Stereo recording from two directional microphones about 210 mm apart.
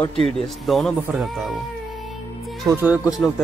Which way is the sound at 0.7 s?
Centre (ahead or behind).